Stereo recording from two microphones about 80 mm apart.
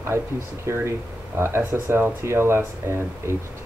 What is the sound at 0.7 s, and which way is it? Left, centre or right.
Speech, right.